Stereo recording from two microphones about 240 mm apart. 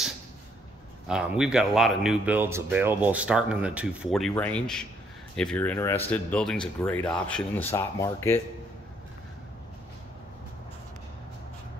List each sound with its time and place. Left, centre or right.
1.0 s speech: centre